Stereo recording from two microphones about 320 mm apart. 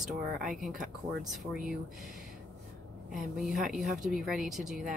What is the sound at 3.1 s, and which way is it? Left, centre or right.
Speech, centre.